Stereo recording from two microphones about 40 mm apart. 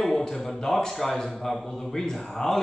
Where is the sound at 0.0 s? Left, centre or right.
Centre.